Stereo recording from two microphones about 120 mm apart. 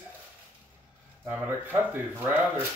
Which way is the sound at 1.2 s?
15° right (ahead or behind).